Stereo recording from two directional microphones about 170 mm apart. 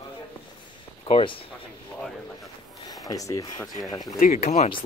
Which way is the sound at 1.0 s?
35° left (ahead or behind).